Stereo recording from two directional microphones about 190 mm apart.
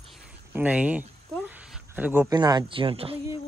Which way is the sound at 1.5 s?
10° right (ahead or behind).